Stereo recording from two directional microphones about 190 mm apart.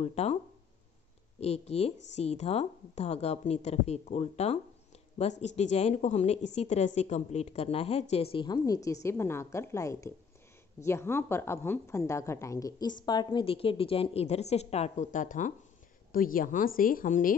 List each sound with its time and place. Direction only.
0.0 s a woman's voice: 35° left (ahead or behind)
1.4 s a woman's voice: 35° left (ahead or behind)
5.6 s a woman's voice: 35° left (ahead or behind)